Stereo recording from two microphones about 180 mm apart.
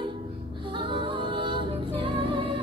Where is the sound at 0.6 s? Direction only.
25° right (ahead or behind).